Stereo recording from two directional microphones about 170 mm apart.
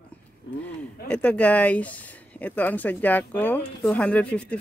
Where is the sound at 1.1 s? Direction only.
10° left (ahead or behind).